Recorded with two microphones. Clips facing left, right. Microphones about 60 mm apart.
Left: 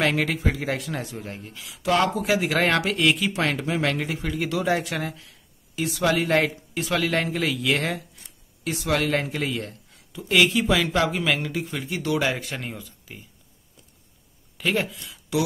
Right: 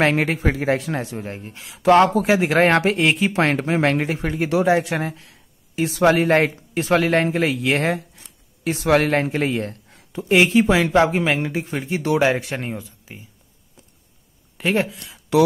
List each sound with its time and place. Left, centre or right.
0.0 s speech: right
3.3 s speech: right
5.9 s speech: right
8.7 s speech: right
10.2 s speech: right
14.6 s speech: right